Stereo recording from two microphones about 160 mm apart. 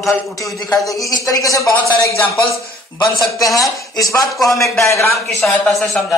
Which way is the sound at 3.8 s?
20° left (ahead or behind).